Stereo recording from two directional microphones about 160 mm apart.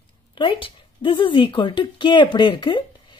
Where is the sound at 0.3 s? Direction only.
30° left (ahead or behind).